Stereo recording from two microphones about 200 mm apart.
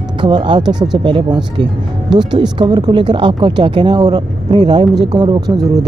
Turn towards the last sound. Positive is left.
turn(degrees=-20)  # may be behind; listen again after turning